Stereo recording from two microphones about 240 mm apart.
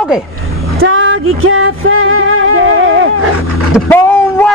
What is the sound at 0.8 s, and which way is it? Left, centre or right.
Music, right.